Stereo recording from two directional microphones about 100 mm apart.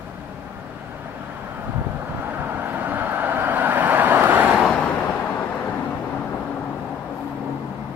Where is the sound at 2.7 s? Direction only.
20° right (ahead or behind).